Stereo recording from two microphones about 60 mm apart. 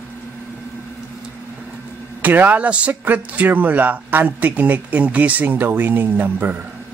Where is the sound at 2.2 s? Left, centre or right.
Right.